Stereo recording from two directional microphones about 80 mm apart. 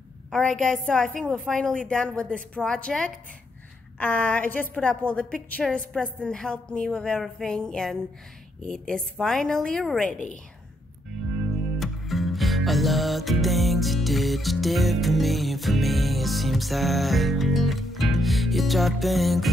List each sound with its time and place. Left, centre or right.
0.3 s a woman's voice: centre
4.0 s a woman's voice: left
11.8 s music: centre